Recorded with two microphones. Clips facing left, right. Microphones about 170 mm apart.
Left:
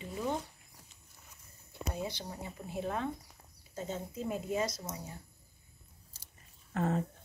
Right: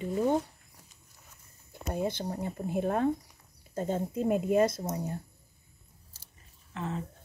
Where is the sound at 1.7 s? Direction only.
50° right (ahead or behind).